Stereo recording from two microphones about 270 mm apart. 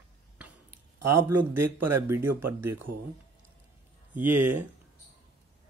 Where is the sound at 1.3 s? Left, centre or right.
Right.